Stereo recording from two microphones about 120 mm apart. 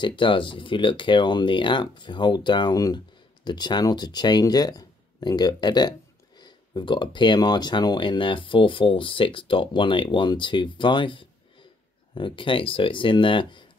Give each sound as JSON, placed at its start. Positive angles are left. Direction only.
{"t": 0.0, "sound": "speech", "side_deg": 40}